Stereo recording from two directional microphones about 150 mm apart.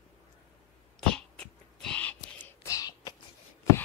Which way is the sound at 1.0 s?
5° left (ahead or behind).